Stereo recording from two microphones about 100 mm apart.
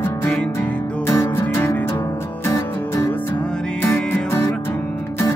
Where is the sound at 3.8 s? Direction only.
20° left (ahead or behind).